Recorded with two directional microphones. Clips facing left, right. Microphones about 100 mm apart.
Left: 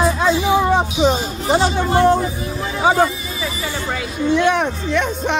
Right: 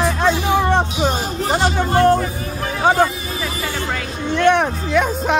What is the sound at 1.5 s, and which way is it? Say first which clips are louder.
Speech: left 2 dB; 20° left (ahead or behind).